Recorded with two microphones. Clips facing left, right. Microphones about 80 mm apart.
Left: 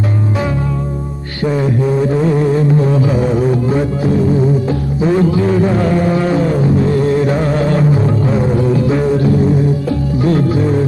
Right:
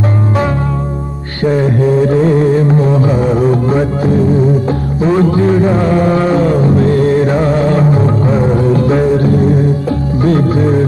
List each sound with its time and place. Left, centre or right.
1.4 s music: right
8.7 s music: right